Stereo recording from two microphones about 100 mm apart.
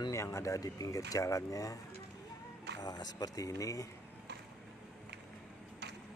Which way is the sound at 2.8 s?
40° left (ahead or behind).